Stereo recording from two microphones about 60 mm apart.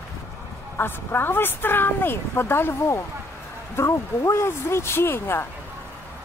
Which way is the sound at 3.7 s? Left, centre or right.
Left.